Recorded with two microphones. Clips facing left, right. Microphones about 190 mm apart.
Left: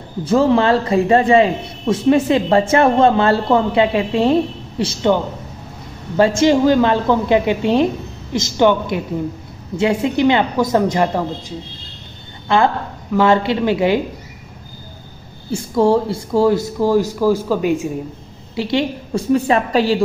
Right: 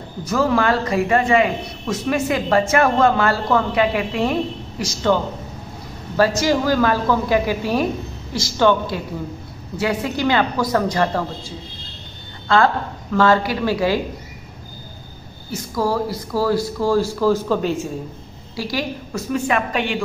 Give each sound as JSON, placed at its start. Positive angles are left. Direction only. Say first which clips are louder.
{"t": 0.2, "sound": "a woman's voice", "louder": "left 5 dB", "side_deg": 30}
{"t": 15.5, "sound": "a woman's voice", "louder": "left 7 dB", "side_deg": 30}
{"t": 18.6, "sound": "a woman's voice", "louder": "left 6 dB", "side_deg": 25}